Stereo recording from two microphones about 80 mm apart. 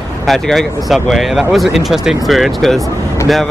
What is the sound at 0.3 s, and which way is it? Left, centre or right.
Speech, centre.